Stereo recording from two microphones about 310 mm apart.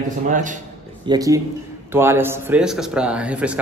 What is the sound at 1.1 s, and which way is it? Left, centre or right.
Speech, centre.